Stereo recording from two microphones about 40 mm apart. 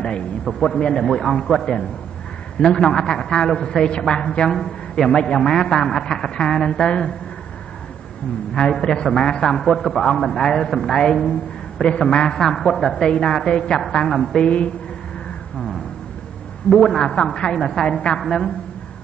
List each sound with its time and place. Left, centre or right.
0.0 s a man's voice: left
4.6 s a man's voice: centre
8.7 s a woman's voice: centre
12.4 s a man's voice: centre
14.4 s a woman's voice: left
16.7 s a man's voice: centre